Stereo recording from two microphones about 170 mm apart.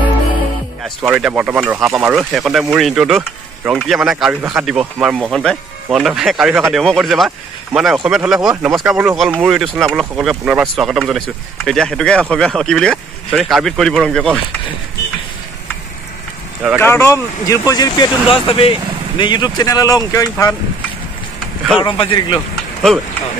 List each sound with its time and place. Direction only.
1.0 s speech: 5° right (ahead or behind)
16.7 s speech: 15° left (ahead or behind)
21.7 s speech: 30° left (ahead or behind)